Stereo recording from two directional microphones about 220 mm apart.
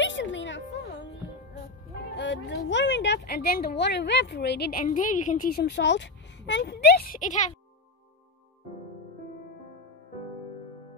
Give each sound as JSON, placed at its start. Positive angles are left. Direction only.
{"t": 0.0, "sound": "music", "side_deg": 55}
{"t": 2.1, "sound": "speech", "side_deg": 55}